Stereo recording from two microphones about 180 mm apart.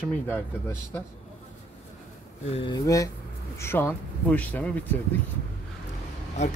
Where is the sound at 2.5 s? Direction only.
25° left (ahead or behind); by 4.8 s 10° left (ahead or behind).